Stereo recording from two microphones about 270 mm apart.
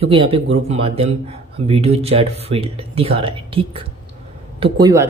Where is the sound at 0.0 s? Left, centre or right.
Centre.